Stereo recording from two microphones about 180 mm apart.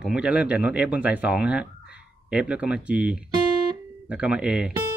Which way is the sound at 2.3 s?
5° right (ahead or behind).